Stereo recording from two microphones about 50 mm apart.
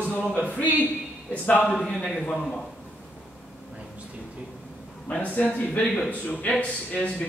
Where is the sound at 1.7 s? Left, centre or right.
Centre.